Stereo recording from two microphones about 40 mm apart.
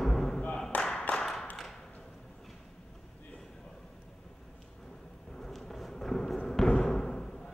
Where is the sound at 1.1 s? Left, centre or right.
Centre.